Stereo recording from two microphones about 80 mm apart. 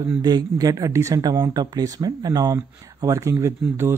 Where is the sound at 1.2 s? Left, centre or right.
Right.